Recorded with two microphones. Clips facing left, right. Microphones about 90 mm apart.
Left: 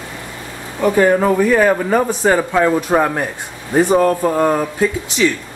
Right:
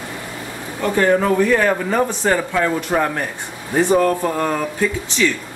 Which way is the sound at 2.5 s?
20° left (ahead or behind).